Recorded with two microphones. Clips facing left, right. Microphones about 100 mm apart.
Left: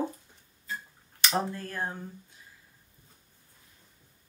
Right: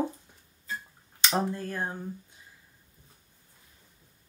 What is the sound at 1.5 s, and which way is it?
Speech, 20° right (ahead or behind).